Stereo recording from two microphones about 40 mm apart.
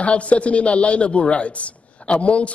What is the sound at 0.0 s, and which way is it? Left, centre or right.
A woman's voice, left.